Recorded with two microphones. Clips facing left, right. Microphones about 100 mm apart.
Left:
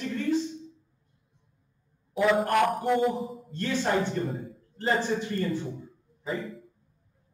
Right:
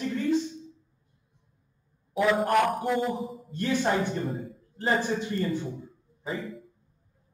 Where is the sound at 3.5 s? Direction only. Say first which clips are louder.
Right 3 dB; 15° right (ahead or behind).